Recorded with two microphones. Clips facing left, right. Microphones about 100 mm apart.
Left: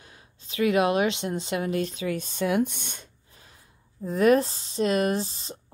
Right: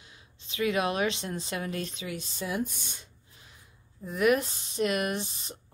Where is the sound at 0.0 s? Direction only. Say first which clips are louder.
Left 3 dB; 40° left (ahead or behind).